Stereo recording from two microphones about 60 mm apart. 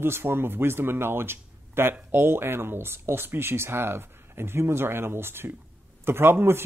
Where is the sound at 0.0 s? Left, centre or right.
Right.